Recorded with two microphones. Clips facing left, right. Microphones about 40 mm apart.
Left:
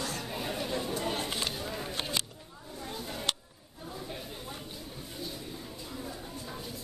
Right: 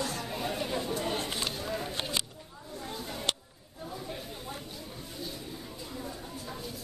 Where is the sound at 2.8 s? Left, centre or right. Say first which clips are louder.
Even; centre.